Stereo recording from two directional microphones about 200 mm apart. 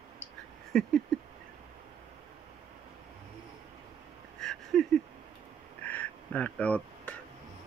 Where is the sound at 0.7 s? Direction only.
Centre (ahead or behind).